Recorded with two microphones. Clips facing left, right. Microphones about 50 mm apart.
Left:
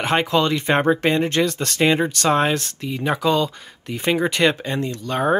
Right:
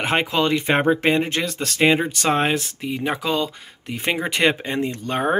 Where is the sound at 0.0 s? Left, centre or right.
Centre.